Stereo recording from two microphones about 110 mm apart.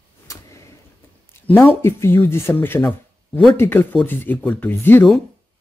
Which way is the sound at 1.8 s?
25° left (ahead or behind).